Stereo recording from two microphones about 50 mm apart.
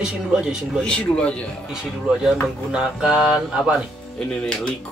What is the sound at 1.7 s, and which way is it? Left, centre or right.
Mantra, centre.